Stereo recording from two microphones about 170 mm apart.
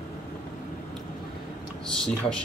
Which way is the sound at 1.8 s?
5° left (ahead or behind).